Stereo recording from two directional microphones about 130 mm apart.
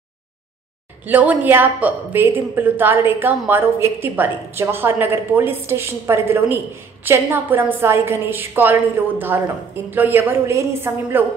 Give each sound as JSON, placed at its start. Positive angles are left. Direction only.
{"t": 1.0, "sound": "a woman's voice", "side_deg": -15}